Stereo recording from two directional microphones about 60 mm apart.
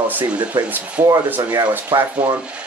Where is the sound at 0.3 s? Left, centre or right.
Right.